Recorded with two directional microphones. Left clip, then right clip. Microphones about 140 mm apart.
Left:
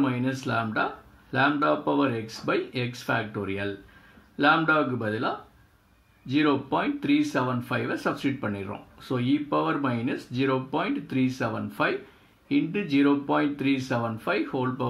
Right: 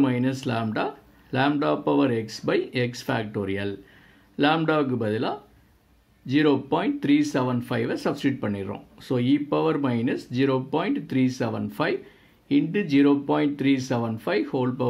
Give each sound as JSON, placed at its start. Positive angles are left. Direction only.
{"t": 0.0, "sound": "speech", "side_deg": -35}